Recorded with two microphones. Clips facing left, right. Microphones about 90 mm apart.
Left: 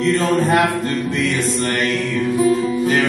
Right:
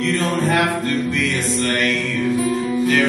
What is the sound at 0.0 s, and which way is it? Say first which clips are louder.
Chant: left 3 dB; 30° left (ahead or behind).